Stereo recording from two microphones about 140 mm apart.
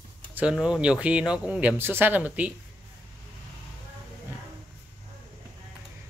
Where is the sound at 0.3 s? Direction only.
10° right (ahead or behind).